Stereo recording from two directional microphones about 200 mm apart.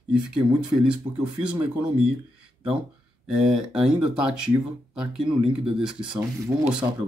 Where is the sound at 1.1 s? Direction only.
20° right (ahead or behind).